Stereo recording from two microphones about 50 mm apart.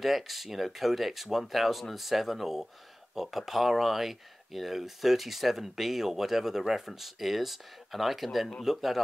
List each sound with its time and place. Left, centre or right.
0.0 s speech: centre